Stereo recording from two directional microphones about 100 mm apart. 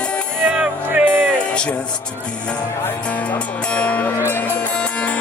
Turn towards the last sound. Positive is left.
turn(degrees=15)  # may be behind; listen again after turning